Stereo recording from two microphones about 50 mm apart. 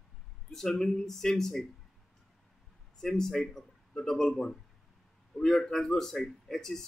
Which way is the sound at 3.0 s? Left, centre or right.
Centre.